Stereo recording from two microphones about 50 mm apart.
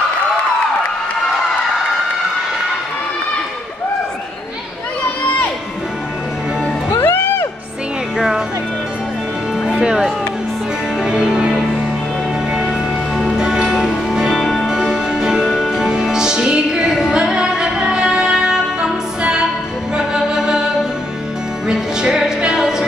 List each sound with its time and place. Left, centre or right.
5.2 s crowd: left
6.9 s music: left
9.7 s music: centre
13.2 s music: centre
14.4 s music: centre
14.7 s music: centre
21.6 s music: centre